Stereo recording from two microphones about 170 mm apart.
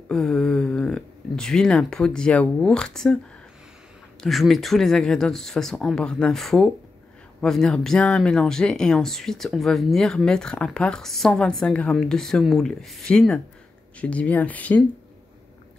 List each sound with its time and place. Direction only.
0.1 s speech: centre (ahead or behind)
4.2 s speech: centre (ahead or behind)